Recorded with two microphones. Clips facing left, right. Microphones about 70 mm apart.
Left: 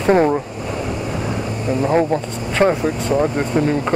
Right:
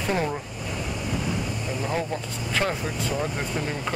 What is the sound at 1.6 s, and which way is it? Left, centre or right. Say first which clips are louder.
Speech: left 14 dB; left.